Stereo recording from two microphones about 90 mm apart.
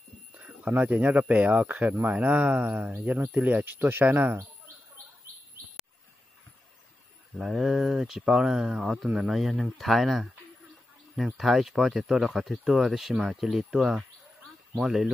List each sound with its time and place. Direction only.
0.3 s speech: 20° right (ahead or behind)
7.3 s speech: 5° right (ahead or behind)